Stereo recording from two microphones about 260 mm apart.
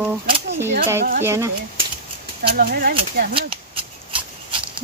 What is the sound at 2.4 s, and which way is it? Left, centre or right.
Speech, right.